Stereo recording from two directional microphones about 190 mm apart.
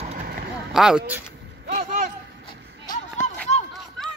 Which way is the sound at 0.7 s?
5° right (ahead or behind).